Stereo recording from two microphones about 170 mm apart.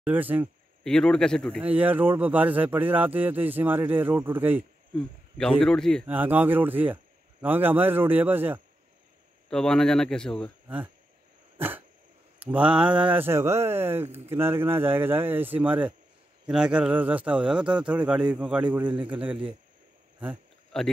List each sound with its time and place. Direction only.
0.0 s speech: 10° right (ahead or behind)
0.8 s speech: 5° left (ahead or behind)
1.6 s speech: 10° right (ahead or behind)
5.6 s speech: 5° left (ahead or behind)
6.0 s speech: 10° right (ahead or behind)
9.5 s speech: 5° left (ahead or behind)
11.5 s dog: 10° right (ahead or behind)
12.4 s speech: 10° right (ahead or behind)
20.7 s speech: 5° left (ahead or behind)